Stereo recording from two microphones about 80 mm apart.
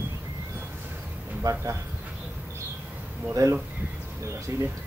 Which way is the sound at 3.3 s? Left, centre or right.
Right.